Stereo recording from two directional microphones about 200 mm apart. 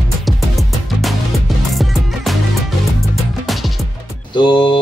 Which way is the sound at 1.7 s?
Centre (ahead or behind).